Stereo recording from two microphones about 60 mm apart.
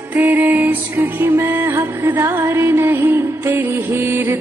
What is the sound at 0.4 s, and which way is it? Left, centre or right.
Music, right.